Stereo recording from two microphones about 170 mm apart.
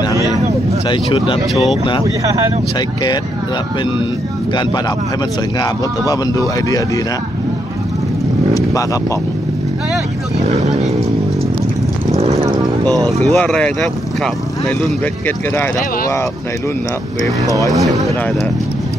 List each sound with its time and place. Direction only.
0.8 s speech: 30° left (ahead or behind)
1.5 s speech: centre (ahead or behind)
5.6 s speech: 20° left (ahead or behind)
10.4 s speech: 40° right (ahead or behind)
12.2 s vehicle: 40° right (ahead or behind)
13.3 s speech: 5° left (ahead or behind)
17.6 s speech: 20° right (ahead or behind)